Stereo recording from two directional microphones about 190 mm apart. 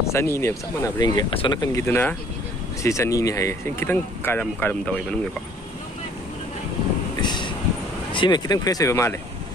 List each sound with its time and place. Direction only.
0.0 s speech: 15° left (ahead or behind)
7.2 s vehicle: 25° left (ahead or behind)
8.1 s speech: 25° left (ahead or behind)